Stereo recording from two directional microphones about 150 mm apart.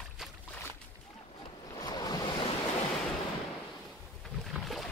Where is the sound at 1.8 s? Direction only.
25° left (ahead or behind).